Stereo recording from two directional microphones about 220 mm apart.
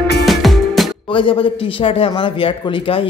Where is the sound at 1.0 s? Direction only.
25° left (ahead or behind).